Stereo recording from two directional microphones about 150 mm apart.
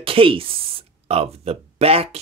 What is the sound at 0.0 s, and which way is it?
Speech, 35° right (ahead or behind).